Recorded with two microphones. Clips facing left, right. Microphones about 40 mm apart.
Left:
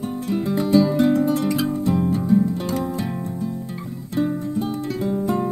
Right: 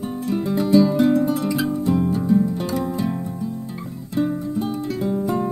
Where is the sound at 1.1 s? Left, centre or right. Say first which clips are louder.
Even; centre.